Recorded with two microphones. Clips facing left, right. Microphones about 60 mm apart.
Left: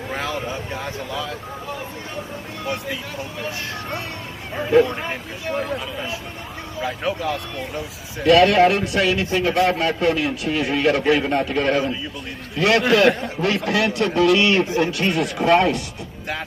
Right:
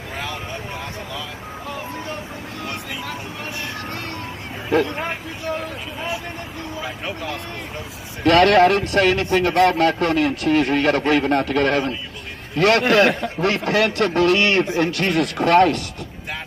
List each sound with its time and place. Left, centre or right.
8.2 s speech: right
12.5 s speech: right
14.3 s a man's voice: right
14.6 s speech: right